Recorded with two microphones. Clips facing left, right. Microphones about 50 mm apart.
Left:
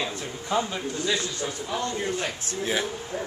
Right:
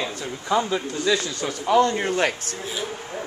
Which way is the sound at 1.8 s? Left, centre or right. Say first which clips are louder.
Right 8 dB; right.